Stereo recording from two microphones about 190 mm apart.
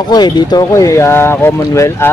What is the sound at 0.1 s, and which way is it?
Speech, 20° left (ahead or behind).